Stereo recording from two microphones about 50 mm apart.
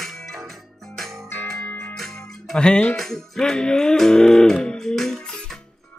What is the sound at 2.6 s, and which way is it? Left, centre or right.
Speech, centre.